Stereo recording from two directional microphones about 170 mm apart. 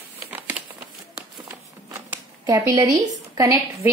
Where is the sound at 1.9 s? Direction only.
15° right (ahead or behind).